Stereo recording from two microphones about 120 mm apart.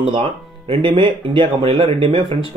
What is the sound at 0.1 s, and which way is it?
Speech, 45° right (ahead or behind).